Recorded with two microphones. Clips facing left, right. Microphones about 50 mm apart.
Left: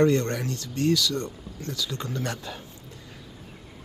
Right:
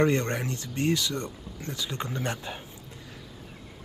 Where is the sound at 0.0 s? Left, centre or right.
Right.